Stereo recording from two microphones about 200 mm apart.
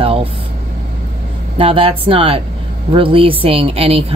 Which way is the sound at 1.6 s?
30° right (ahead or behind).